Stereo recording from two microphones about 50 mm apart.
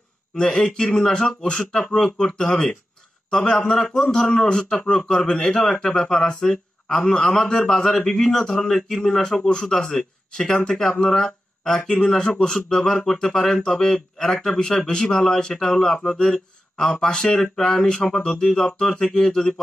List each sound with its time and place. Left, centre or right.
0.4 s speech: centre